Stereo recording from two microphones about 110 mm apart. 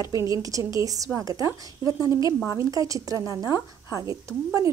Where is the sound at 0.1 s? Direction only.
30° right (ahead or behind).